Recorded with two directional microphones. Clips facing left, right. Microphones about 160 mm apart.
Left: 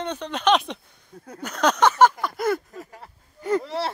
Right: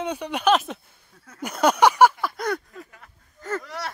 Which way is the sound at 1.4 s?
10° right (ahead or behind).